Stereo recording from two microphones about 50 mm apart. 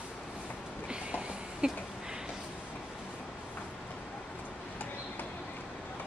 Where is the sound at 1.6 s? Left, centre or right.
Right.